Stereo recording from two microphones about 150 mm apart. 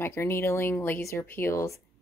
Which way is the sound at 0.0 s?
15° left (ahead or behind).